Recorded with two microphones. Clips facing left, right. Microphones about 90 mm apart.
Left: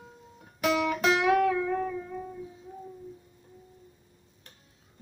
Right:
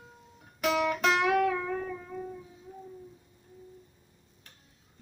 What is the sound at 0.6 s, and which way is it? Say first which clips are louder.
Music: left 1 dB; 5° left (ahead or behind).